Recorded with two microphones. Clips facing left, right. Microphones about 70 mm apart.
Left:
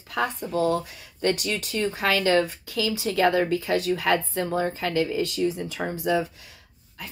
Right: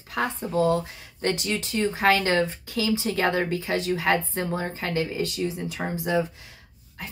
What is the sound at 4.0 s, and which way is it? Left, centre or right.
Speech, right.